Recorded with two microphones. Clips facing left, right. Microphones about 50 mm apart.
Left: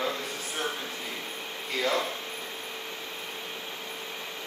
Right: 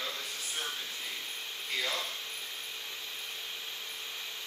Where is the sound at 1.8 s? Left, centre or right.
Left.